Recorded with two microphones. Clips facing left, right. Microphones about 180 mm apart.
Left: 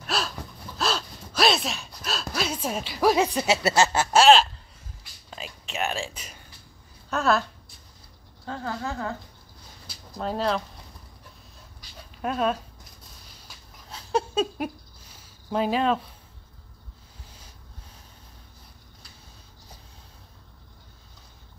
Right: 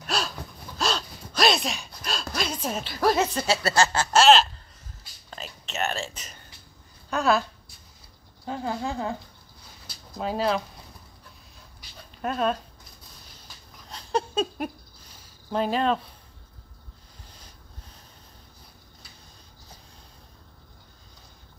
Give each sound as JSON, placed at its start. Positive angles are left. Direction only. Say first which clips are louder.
{"t": 0.0, "sound": "gasp", "louder": "even", "side_deg": 0}
{"t": 0.7, "sound": "speech", "louder": "even", "side_deg": 5}
{"t": 3.4, "sound": "a sound", "louder": "left 1 dB", "side_deg": 20}
{"t": 4.1, "sound": "a sound", "louder": "left 1 dB", "side_deg": 0}
{"t": 5.3, "sound": "whispering", "louder": "left 1 dB", "side_deg": 5}
{"t": 7.1, "sound": "speech", "louder": "even", "side_deg": 0}
{"t": 8.5, "sound": "speech", "louder": "right 2 dB", "side_deg": -15}
{"t": 10.1, "sound": "speech", "louder": "right 1 dB", "side_deg": -5}
{"t": 12.2, "sound": "speech", "louder": "even", "side_deg": 5}
{"t": 13.5, "sound": "a sound", "louder": "even", "side_deg": 5}